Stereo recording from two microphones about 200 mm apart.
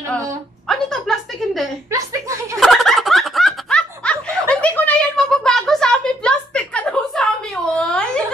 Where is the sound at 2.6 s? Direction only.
Centre (ahead or behind).